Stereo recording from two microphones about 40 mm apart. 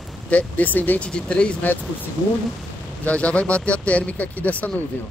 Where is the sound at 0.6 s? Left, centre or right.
Left.